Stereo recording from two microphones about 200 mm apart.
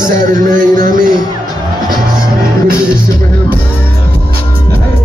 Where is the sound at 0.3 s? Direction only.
40° right (ahead or behind).